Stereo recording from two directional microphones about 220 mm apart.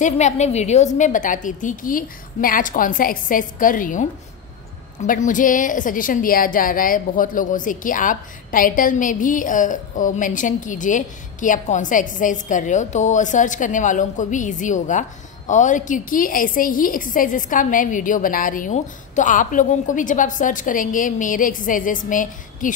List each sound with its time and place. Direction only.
0.0 s a woman's voice: 30° left (ahead or behind)